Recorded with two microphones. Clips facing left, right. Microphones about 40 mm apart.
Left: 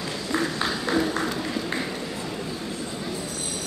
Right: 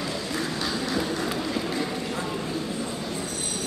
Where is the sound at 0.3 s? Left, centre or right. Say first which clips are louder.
Left 6 dB; left.